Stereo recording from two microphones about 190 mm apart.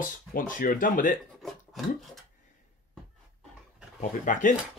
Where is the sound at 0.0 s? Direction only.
45° left (ahead or behind).